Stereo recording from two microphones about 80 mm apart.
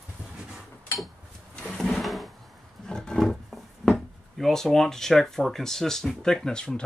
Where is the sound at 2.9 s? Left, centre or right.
Centre.